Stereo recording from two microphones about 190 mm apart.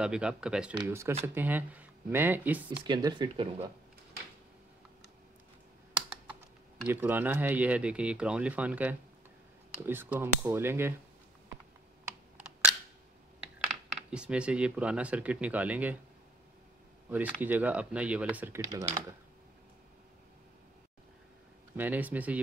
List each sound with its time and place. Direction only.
0.0 s speech: 5° right (ahead or behind)
2.8 s speech: 25° right (ahead or behind)
6.9 s speech: 10° right (ahead or behind)
14.1 s speech: 5° right (ahead or behind)
17.1 s speech: 10° right (ahead or behind)
18.7 s speech: 20° right (ahead or behind)
21.7 s speech: 10° right (ahead or behind)